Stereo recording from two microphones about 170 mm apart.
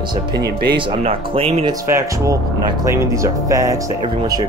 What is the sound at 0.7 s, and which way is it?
Speech, 35° right (ahead or behind).